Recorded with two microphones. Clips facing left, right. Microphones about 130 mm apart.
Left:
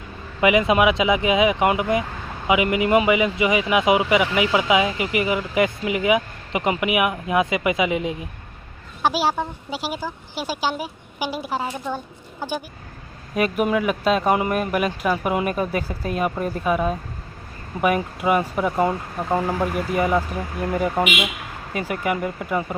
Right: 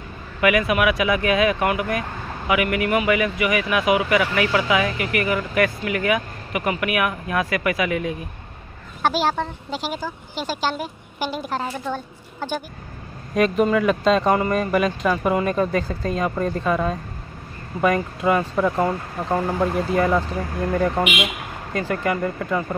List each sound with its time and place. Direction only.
0.4 s speech: 20° left (ahead or behind)
9.0 s a woman's voice: 10° left (ahead or behind)